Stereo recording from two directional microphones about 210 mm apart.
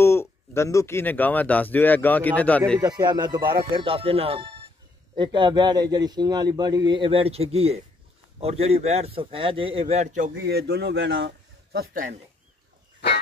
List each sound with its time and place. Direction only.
0.0 s speech: 10° left (ahead or behind)
2.8 s a man's voice: 20° right (ahead or behind)
10.4 s a man's voice: 50° right (ahead or behind)